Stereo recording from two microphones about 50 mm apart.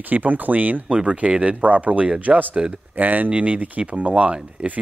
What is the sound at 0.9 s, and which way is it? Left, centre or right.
Speech, right.